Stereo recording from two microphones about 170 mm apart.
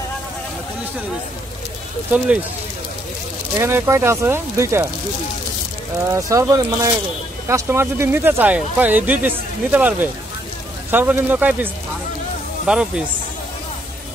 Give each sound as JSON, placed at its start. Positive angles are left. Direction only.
{"t": 3.5, "sound": "speech", "side_deg": -15}
{"t": 5.9, "sound": "speech", "side_deg": -20}